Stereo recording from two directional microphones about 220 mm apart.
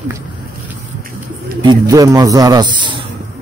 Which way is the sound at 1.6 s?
15° right (ahead or behind).